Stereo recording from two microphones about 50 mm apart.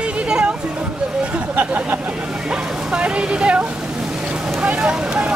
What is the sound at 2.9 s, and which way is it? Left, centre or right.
Speech, right.